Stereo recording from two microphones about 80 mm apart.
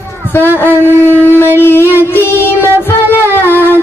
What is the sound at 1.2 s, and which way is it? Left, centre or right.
Shofar, left.